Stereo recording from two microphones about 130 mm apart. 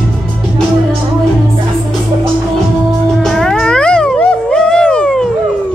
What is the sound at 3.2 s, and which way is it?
Cat, 5° left (ahead or behind).